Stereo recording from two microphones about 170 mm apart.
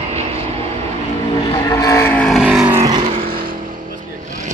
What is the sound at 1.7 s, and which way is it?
Vehicle, 20° left (ahead or behind).